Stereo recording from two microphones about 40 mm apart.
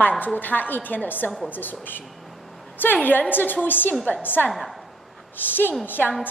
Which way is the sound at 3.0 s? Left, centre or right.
Left.